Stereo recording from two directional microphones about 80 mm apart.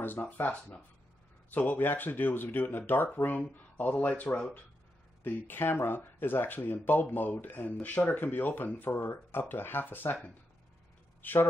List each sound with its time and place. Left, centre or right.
0.0 s speech: left
11.2 s speech: left